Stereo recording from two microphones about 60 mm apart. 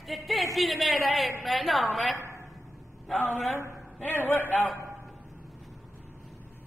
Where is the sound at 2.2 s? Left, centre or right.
Right.